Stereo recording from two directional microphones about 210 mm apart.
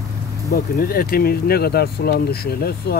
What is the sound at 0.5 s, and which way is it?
Speech, 45° left (ahead or behind).